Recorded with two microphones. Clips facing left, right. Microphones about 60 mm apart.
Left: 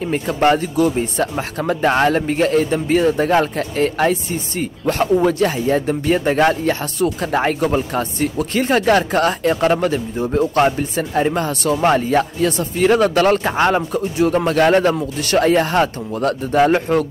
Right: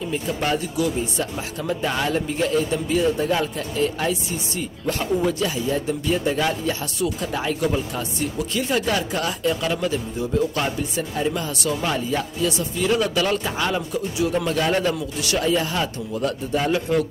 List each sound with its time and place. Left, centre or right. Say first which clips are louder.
0.0 s speech: left 8 dB; left